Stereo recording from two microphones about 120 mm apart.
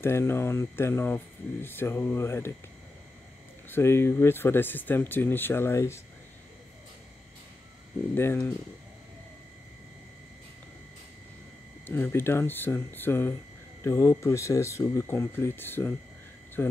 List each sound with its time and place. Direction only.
0.0 s speech: 20° left (ahead or behind)
3.7 s speech: 20° left (ahead or behind)
8.1 s speech: 20° left (ahead or behind)
11.8 s speech: 20° left (ahead or behind)